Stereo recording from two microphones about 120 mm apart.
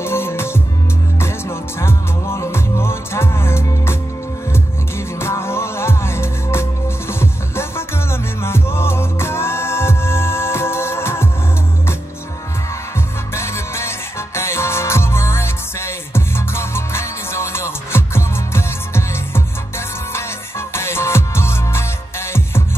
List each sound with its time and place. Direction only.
0.0 s music: 20° left (ahead or behind)
13.3 s music: 20° left (ahead or behind)